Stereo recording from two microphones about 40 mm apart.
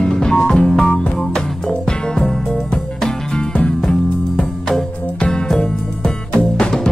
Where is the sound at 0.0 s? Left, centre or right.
Centre.